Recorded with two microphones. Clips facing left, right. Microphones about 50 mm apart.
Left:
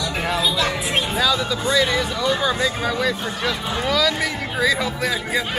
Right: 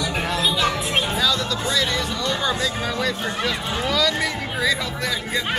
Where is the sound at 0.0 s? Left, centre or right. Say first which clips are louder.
Left 1 dB; centre.